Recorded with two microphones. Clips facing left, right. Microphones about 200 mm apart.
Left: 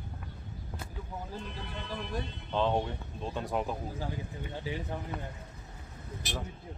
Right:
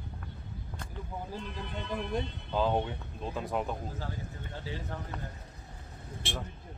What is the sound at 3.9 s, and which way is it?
Speech, 15° left (ahead or behind).